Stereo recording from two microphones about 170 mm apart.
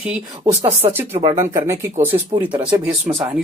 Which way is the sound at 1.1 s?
35° right (ahead or behind).